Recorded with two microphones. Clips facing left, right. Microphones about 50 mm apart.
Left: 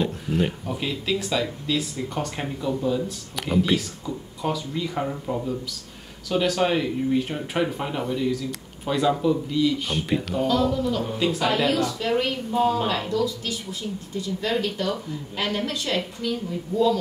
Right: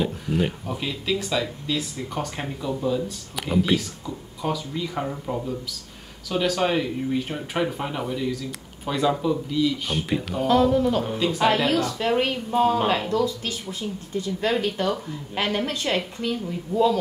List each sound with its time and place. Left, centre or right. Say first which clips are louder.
0.0 s speech: even; centre
10.5 s speech: right 6 dB; right